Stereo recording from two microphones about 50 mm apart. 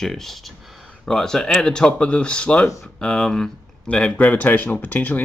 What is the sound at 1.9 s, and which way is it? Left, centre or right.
Speech, left.